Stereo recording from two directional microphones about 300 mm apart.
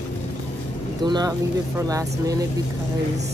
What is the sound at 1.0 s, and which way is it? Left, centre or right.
Speech, centre.